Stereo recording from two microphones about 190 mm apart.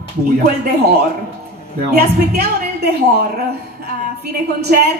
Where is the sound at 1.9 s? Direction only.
60° right (ahead or behind).